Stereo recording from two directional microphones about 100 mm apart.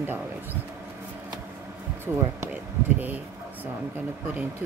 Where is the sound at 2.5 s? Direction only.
20° right (ahead or behind).